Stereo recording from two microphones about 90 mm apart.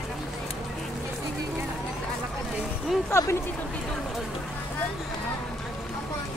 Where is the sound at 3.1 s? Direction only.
30° left (ahead or behind).